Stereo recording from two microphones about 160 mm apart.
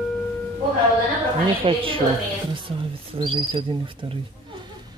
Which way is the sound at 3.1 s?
30° right (ahead or behind).